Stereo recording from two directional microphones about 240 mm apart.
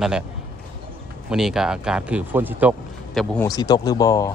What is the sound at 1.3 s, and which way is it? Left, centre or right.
Speech, centre.